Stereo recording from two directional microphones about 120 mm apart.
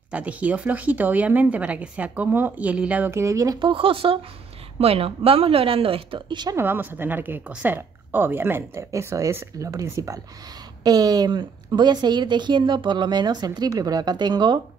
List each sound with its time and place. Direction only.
0.1 s speech: 10° right (ahead or behind)
3.2 s speech: 25° right (ahead or behind)
3.5 s a woman's voice: 45° right (ahead or behind)
6.5 s a woman's voice: 15° right (ahead or behind); by 14.6 s 40° right (ahead or behind)